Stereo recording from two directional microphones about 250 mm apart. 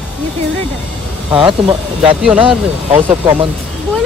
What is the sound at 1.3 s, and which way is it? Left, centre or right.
Speech, right.